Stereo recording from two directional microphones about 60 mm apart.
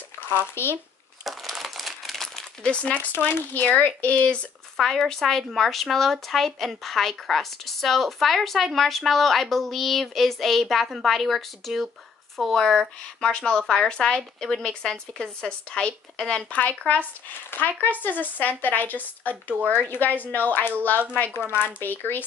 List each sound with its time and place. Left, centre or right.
0.3 s speech: left
1.2 s crumpling: centre
2.7 s speech: left
4.7 s speech: centre
16.4 s speech: left